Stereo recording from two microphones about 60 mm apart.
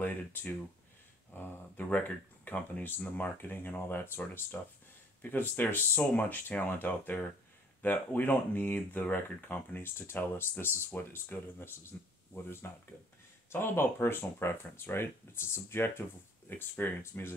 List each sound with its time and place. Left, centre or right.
0.0 s speech: left
4.5 s speech: left